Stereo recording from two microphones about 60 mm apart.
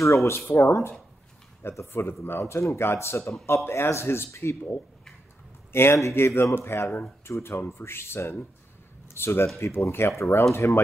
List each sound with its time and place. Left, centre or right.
0.0 s speech: left
5.7 s a man's voice: left